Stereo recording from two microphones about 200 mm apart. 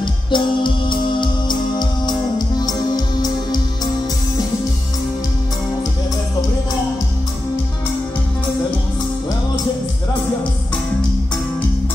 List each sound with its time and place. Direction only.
0.0 s music: 25° left (ahead or behind)